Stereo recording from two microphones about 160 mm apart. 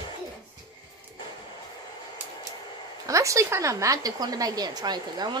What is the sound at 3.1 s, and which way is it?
A woman's voice, 20° right (ahead or behind).